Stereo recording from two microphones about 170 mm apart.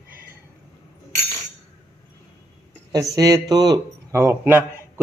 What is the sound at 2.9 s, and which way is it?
A man's voice, 20° right (ahead or behind).